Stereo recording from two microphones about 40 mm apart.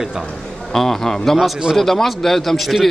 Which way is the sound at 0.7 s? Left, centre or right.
Centre.